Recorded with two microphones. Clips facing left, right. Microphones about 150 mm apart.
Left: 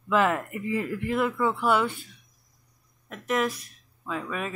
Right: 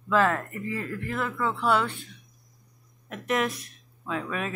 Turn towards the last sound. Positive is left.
turn(degrees=0)  # may be behind; listen again after turning